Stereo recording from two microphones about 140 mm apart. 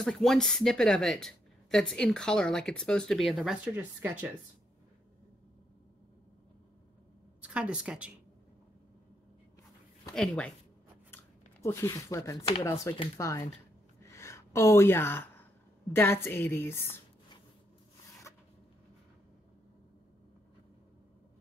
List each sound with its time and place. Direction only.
0.0 s speech: centre (ahead or behind)
3.7 s a woman's voice: 15° right (ahead or behind)
7.4 s a woman's voice: 10° right (ahead or behind)
10.1 s speech: 5° left (ahead or behind)
11.6 s speech: 20° left (ahead or behind)
14.0 s gasp: 20° left (ahead or behind)
15.9 s a woman's voice: 15° left (ahead or behind)